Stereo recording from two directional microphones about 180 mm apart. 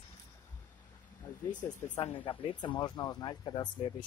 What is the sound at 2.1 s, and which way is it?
Speech, 30° left (ahead or behind).